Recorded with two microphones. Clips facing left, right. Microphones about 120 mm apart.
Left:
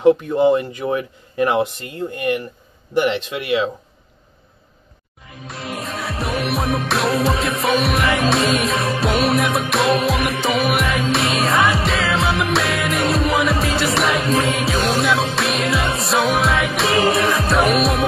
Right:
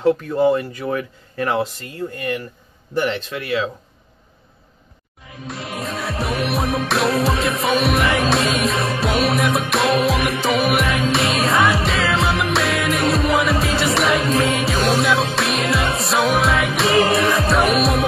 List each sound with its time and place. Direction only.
0.0 s speech: 20° left (ahead or behind)
5.5 s music: centre (ahead or behind)